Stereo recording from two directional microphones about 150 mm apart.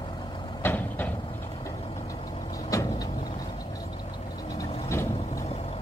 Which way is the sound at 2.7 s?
20° left (ahead or behind).